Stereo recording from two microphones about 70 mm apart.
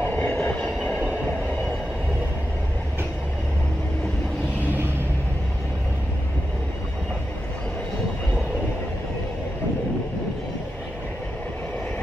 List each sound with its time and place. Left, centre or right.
0.0 s train: left